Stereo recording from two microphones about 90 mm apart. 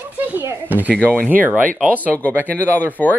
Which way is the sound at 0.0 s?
20° right (ahead or behind).